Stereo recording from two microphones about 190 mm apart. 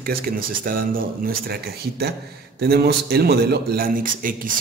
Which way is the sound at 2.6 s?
55° right (ahead or behind).